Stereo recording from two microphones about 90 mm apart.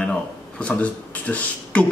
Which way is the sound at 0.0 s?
10° left (ahead or behind).